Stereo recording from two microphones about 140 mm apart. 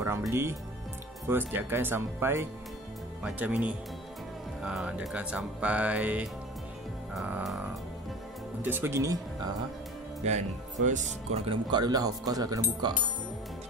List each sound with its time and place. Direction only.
0.3 s speech: 20° right (ahead or behind)
8.6 s speech: 15° right (ahead or behind)
10.2 s speech: 55° right (ahead or behind)
11.4 s speech: 35° right (ahead or behind)